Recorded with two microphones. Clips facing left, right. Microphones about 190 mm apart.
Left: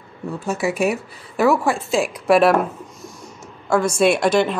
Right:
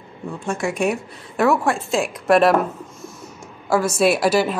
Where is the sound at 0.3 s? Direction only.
5° left (ahead or behind).